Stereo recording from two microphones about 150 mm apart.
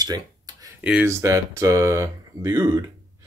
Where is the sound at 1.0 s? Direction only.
20° right (ahead or behind).